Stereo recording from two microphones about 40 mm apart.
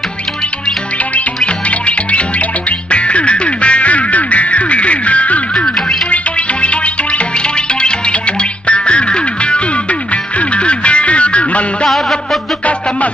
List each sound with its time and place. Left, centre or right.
1.1 s music: left
5.8 s music: centre
6.0 s music: left
11.9 s music: centre